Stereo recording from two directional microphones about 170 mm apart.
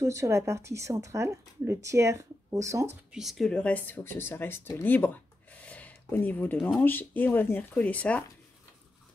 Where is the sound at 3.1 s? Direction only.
Centre (ahead or behind).